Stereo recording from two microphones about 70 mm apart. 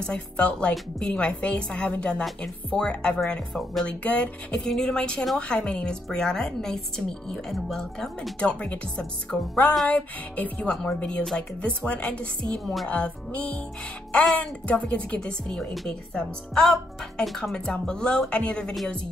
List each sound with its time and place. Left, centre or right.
0.0 s speech: centre
8.4 s speech: centre